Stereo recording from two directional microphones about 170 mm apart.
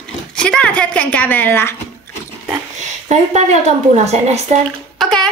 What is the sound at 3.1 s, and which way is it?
A woman's voice, 40° right (ahead or behind).